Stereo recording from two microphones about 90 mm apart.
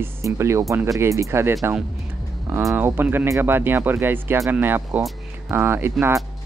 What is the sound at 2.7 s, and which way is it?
Speech, 20° right (ahead or behind).